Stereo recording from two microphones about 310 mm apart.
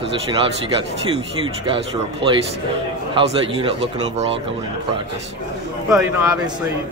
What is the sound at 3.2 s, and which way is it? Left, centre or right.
Speech, centre.